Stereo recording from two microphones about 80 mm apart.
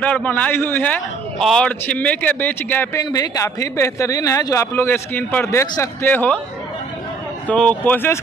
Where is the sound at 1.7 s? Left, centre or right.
Centre.